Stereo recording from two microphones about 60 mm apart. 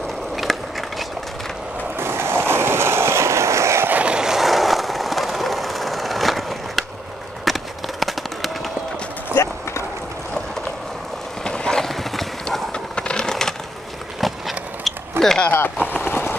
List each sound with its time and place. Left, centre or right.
0.4 s skateboard: centre
2.0 s a sound: right
4.0 s vehicle: centre
7.4 s run: centre
9.3 s run: left
11.4 s clip-clop: centre
12.4 s vehicle: centre
14.2 s a sound: centre
15.5 s a sound: left